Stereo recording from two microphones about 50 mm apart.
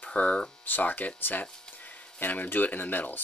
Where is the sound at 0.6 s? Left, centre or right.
Left.